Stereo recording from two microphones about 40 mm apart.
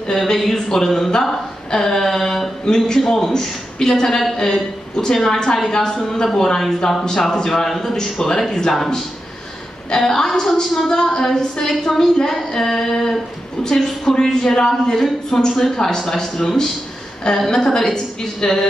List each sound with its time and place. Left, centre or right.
0.1 s speech: centre
8.7 s speech: centre
9.8 s a woman's voice: centre